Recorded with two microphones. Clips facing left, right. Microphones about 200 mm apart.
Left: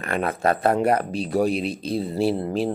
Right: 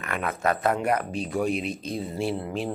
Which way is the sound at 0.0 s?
35° left (ahead or behind).